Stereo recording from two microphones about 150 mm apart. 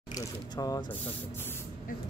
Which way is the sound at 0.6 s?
25° left (ahead or behind).